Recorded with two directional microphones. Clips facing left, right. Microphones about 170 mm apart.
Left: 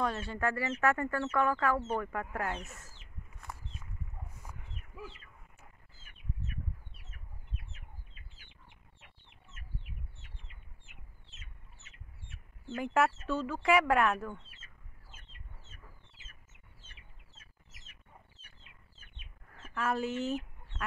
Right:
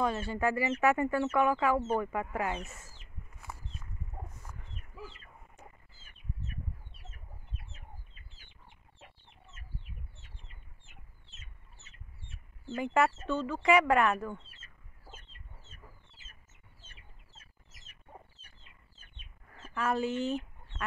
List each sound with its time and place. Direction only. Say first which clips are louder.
0.0 s speech: right 3 dB; centre (ahead or behind)
4.4 s dog: even; 10° left (ahead or behind)
5.6 s bird: right 8 dB; 5° left (ahead or behind)
7.7 s chicken: right 2 dB; 30° right (ahead or behind)
12.6 s speech: right 1 dB; centre (ahead or behind)
19.5 s duck: right 2 dB; centre (ahead or behind)